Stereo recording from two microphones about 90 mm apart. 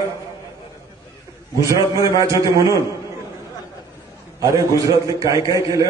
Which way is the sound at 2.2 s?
35° right (ahead or behind).